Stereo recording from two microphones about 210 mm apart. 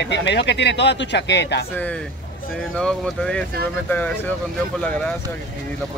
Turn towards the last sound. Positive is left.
turn(degrees=5)  # may be behind; listen again after turning